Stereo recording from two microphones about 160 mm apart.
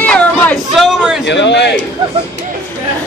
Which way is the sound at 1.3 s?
90° left.